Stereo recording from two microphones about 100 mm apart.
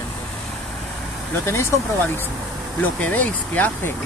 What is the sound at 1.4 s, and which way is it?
Speech, 25° left (ahead or behind).